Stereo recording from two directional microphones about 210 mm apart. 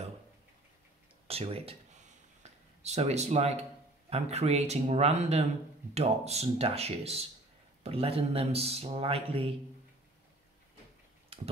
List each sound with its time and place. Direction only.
1.2 s speech: 30° right (ahead or behind)
2.8 s speech: 30° right (ahead or behind)
11.3 s a sound: 25° right (ahead or behind)